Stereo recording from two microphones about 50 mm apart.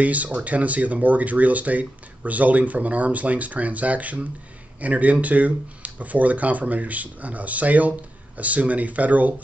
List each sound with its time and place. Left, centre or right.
0.0 s speech: right